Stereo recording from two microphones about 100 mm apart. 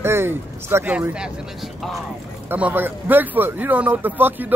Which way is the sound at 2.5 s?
15° right (ahead or behind).